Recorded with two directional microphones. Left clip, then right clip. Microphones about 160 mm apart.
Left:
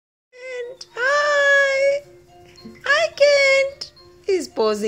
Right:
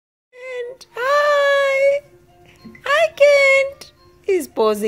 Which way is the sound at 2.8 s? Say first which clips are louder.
Right 2 dB; 10° right (ahead or behind).